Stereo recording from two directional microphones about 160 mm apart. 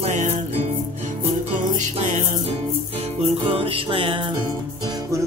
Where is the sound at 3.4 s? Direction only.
35° right (ahead or behind).